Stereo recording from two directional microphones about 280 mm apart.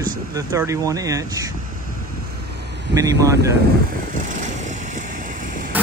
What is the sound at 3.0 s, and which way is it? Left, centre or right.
Speech, centre.